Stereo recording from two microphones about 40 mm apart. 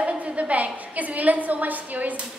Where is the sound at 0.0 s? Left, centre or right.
Right.